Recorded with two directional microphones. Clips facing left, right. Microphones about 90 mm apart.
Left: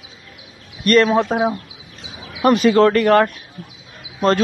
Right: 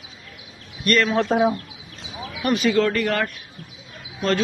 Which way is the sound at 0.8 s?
40° left (ahead or behind).